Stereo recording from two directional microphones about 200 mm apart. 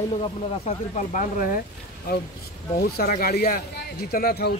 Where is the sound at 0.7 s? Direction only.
35° left (ahead or behind).